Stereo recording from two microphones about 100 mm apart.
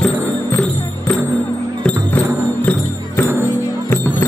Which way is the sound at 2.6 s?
15° left (ahead or behind).